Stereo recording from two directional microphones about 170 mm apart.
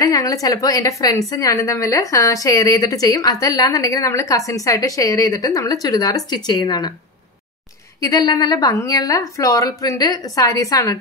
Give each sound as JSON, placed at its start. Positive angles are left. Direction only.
{"t": 0.0, "sound": "a woman's voice", "side_deg": 20}
{"t": 8.0, "sound": "a woman's voice", "side_deg": 20}